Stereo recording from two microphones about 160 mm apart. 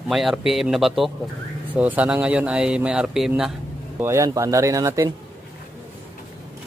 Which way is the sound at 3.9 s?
15° right (ahead or behind).